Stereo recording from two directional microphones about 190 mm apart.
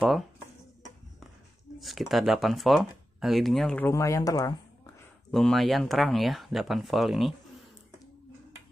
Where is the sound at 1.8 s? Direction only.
Centre (ahead or behind); by 4.6 s 20° left (ahead or behind).